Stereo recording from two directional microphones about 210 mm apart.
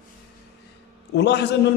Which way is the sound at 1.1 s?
55° left (ahead or behind).